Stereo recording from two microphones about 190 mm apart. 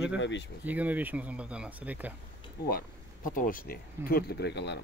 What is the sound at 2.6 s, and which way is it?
Speech, 50° left (ahead or behind).